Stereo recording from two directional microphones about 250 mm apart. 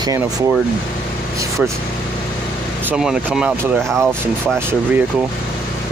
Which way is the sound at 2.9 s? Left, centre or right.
Centre.